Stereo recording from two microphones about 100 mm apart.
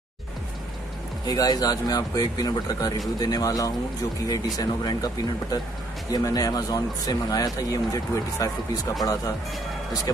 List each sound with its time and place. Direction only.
1.2 s speech: 40° left (ahead or behind)